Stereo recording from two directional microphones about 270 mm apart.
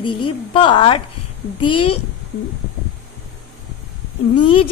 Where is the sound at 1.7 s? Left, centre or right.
Left.